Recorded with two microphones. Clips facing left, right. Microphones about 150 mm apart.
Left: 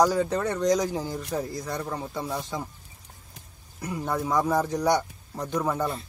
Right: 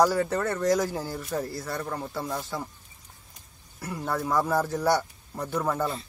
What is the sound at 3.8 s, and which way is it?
Speech, 10° left (ahead or behind).